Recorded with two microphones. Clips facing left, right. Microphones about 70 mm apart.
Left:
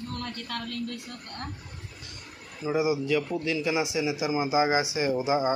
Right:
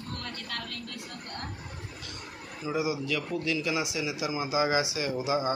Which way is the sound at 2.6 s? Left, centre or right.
Left.